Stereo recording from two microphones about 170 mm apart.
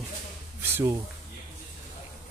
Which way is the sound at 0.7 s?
15° right (ahead or behind).